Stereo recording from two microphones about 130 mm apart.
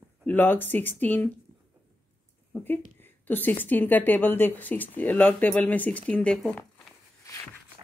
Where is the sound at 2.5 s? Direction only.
15° left (ahead or behind).